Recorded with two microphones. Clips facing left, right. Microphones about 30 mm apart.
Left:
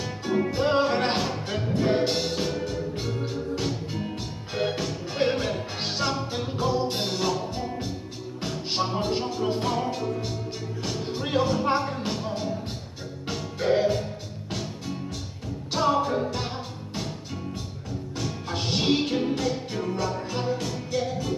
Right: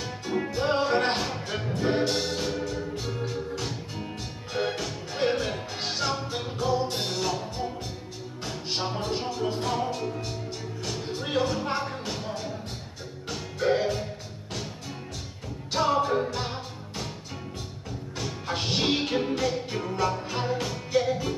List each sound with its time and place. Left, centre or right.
0.6 s music: centre
3.1 s organ: centre
5.1 s music: centre
5.9 s music: centre
13.7 s music: centre
15.7 s music: centre
18.2 s music: centre